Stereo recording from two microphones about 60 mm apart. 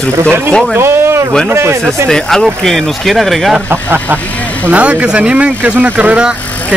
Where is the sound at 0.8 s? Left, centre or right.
Right.